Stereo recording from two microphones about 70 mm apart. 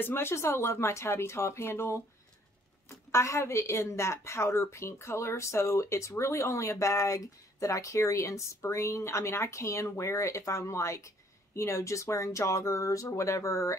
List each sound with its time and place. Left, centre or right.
0.0 s speech: left
3.1 s a woman's voice: left